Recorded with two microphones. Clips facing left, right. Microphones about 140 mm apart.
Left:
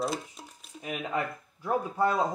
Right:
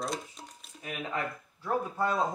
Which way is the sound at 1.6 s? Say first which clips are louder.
Left 3 dB; 15° left (ahead or behind).